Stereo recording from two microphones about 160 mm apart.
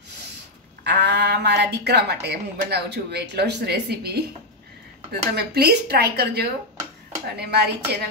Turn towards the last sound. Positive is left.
turn(degrees=-90)